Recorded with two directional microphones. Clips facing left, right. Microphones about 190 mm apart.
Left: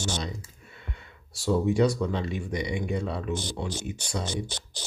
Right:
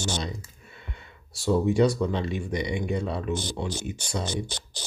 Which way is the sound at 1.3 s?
25° right (ahead or behind).